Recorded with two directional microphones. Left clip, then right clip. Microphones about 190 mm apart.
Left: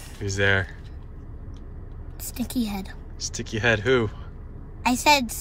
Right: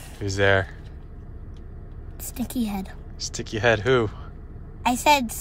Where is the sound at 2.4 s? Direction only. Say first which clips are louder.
Even; 15° right (ahead or behind).